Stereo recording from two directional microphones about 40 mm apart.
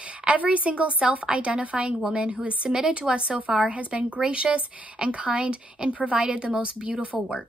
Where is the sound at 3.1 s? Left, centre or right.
Right.